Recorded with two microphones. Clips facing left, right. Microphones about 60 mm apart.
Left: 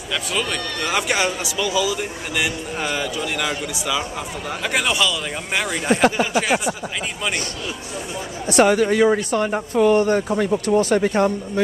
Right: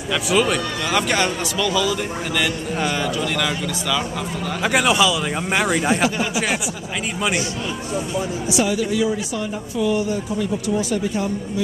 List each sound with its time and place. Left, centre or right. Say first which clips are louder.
0.1 s a man's voice: right 5 dB; centre
0.9 s a man's voice: right 1 dB; centre
4.6 s a man's voice: right 4 dB; centre
6.0 s speech: left 4 dB; left
8.5 s speech: left 7 dB; left